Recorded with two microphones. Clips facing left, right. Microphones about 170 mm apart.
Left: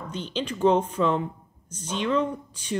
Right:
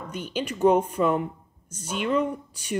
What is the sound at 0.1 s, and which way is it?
A woman's voice, 10° right (ahead or behind).